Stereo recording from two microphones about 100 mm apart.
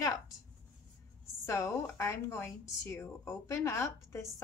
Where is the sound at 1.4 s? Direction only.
30° left (ahead or behind).